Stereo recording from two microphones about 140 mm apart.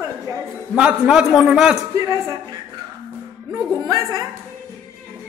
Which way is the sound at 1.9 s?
20° right (ahead or behind).